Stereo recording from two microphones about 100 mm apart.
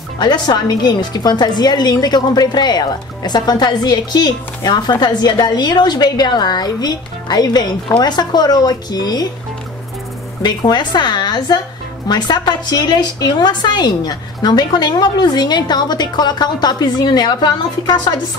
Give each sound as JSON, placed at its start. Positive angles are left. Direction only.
{"t": 0.2, "sound": "a woman's voice", "side_deg": 45}
{"t": 10.4, "sound": "a woman's voice", "side_deg": 45}